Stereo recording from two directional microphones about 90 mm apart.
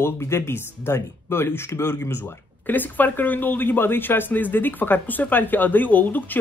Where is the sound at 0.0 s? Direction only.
30° left (ahead or behind).